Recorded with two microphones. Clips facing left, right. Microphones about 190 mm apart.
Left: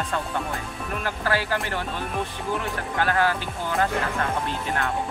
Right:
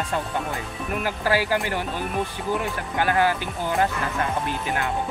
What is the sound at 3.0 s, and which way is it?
Music, 15° right (ahead or behind).